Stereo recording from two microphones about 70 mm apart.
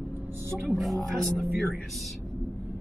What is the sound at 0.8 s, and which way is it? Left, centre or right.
Speech, centre.